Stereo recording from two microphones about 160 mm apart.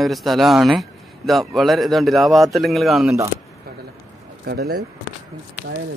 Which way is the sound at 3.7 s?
75° right (ahead or behind).